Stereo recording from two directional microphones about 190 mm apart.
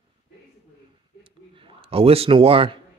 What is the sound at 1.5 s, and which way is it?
A man's voice, 30° right (ahead or behind).